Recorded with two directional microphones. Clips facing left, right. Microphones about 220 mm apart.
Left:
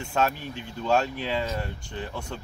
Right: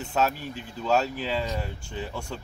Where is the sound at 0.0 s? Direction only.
5° right (ahead or behind).